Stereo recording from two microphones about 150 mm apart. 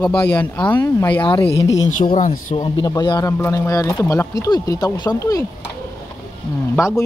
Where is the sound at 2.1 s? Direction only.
60° left (ahead or behind).